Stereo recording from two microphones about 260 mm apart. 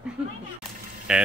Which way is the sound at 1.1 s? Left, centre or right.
Centre.